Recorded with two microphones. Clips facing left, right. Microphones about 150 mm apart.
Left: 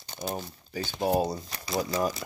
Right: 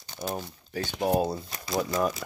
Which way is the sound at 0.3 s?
5° left (ahead or behind).